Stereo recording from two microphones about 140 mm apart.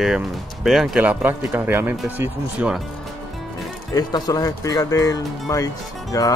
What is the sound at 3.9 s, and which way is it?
Speech, 25° left (ahead or behind).